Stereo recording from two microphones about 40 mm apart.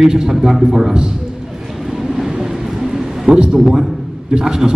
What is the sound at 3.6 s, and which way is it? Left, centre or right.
A man's voice, centre.